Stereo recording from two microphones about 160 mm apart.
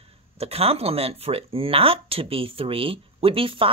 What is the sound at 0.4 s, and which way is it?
Speech, 40° right (ahead or behind).